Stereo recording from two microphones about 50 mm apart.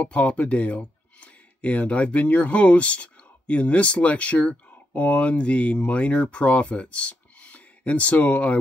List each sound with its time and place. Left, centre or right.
0.0 s speech: left